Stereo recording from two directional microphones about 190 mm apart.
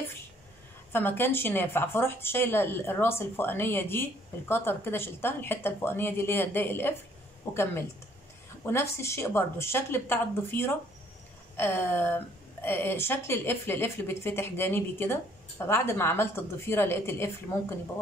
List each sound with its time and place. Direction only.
0.9 s a woman's voice: 10° left (ahead or behind)
8.6 s a woman's voice: 15° left (ahead or behind)